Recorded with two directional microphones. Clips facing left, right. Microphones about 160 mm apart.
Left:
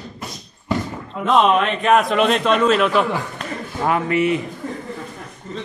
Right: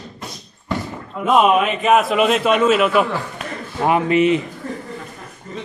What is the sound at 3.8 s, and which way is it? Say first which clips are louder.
Speech: right 3 dB; 20° right (ahead or behind).